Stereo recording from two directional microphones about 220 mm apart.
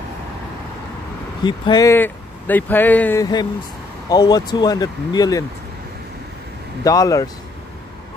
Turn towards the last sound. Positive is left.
turn(degrees=15)  # may be behind; listen again after turning